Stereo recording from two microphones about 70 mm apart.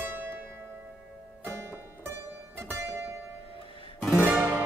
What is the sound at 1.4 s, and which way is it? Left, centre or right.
Music, right.